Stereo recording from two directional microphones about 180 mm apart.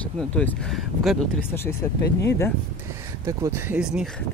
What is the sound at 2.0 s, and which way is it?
Speech, 70° left (ahead or behind).